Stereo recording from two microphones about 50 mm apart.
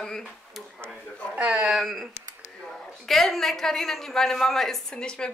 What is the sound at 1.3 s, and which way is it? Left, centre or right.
Speech, right.